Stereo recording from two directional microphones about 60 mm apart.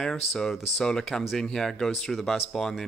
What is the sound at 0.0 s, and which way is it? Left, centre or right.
Speech, centre.